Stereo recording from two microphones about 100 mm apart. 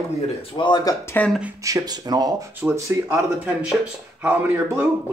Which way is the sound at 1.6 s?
35° right (ahead or behind).